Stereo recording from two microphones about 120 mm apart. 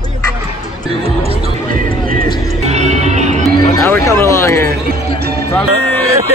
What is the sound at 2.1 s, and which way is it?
Music, 70° right (ahead or behind).